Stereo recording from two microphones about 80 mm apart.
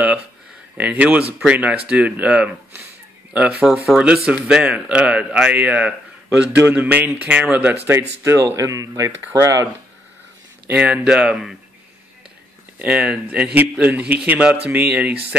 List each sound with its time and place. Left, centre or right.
0.7 s a man's voice: centre
7.9 s speech: right
8.5 s speech: right
10.7 s a man's voice: centre
12.7 s a man's voice: centre